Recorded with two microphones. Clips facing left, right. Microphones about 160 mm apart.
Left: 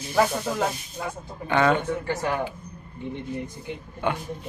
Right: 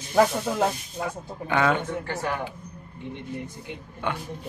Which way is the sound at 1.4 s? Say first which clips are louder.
Left 2 dB; 5° right (ahead or behind).